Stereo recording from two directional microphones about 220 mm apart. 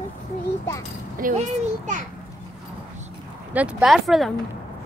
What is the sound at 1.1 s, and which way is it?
Speech, 35° right (ahead or behind).